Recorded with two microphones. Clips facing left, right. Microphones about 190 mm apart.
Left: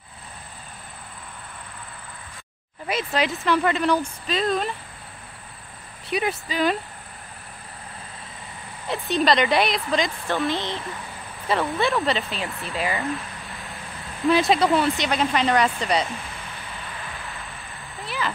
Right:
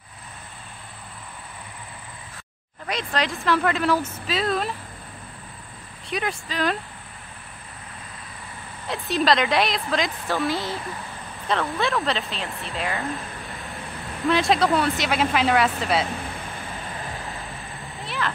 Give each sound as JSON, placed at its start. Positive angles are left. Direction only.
{"t": 2.9, "sound": "speech", "side_deg": 5}
{"t": 6.0, "sound": "speech", "side_deg": 5}
{"t": 8.8, "sound": "speech", "side_deg": 0}
{"t": 17.3, "sound": "vehicle", "side_deg": -20}
{"t": 18.0, "sound": "a sound", "side_deg": 0}